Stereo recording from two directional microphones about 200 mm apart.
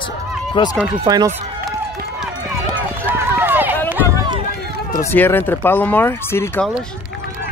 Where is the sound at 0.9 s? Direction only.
20° right (ahead or behind).